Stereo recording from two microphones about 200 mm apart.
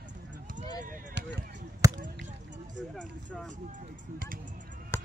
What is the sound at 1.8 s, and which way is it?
Basketball bounce, 15° right (ahead or behind).